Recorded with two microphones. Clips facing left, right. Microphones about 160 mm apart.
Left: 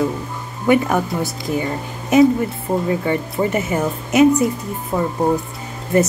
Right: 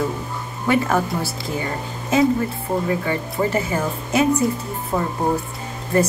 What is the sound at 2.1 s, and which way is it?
Speech, 20° left (ahead or behind).